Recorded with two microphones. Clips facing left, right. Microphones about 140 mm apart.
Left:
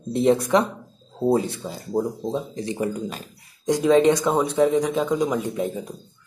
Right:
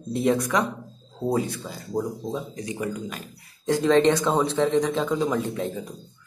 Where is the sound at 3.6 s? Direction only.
15° left (ahead or behind).